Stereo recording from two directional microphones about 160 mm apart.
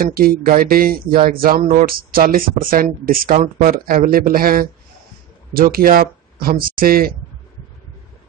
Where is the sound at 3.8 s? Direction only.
60° right (ahead or behind).